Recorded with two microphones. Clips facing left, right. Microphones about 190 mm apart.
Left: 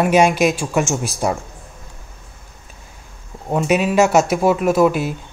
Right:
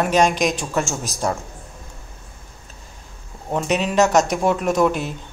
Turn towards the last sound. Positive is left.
turn(degrees=5)  # may be behind; listen again after turning